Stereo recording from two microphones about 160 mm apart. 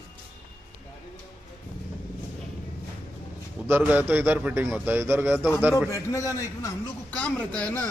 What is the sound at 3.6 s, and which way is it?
A man's voice, 10° right (ahead or behind).